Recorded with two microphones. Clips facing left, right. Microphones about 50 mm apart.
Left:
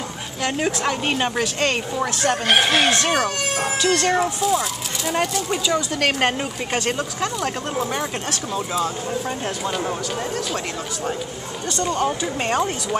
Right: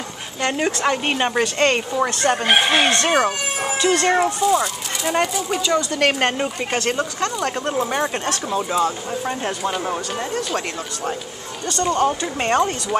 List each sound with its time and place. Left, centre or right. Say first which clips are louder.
0.4 s speech: right 2 dB; centre
0.8 s speech: right 2 dB; centre
11.7 s speech: right 3 dB; centre